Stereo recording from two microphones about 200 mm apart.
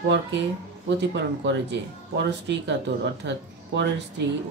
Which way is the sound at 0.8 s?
60° right (ahead or behind).